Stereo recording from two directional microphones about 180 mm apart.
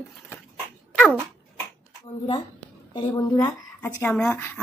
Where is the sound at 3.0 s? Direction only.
20° left (ahead or behind).